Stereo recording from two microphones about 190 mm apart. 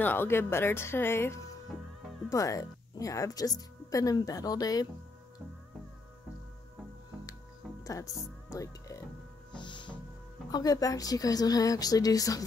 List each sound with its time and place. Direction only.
0.0 s a woman's voice: 10° left (ahead or behind)
7.8 s speech: 15° left (ahead or behind)
8.5 s music: 15° left (ahead or behind)
10.5 s a woman's voice: 20° left (ahead or behind)